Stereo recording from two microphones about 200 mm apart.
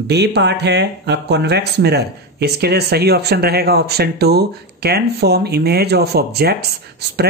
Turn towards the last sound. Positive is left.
turn(degrees=-55)  # may be behind; listen again after turning